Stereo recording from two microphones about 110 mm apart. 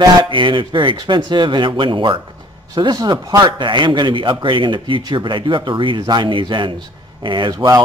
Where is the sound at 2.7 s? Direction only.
40° right (ahead or behind).